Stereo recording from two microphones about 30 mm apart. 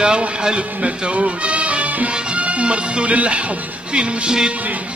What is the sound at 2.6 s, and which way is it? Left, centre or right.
Music, right.